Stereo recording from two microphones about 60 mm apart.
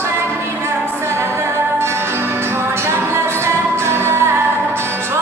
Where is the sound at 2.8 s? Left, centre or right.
Right.